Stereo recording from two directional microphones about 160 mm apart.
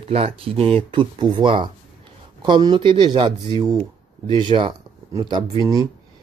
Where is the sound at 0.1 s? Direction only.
40° right (ahead or behind).